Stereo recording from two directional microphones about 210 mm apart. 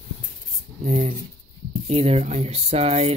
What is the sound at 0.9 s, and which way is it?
Speech, 30° right (ahead or behind).